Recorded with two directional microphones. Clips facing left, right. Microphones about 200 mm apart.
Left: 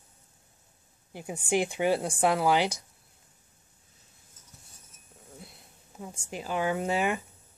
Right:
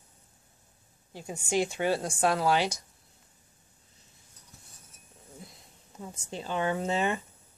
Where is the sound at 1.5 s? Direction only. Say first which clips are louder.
Left 2 dB; 15° left (ahead or behind).